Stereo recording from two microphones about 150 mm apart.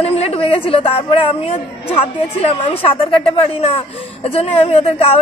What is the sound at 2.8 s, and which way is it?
A woman's voice, 35° left (ahead or behind).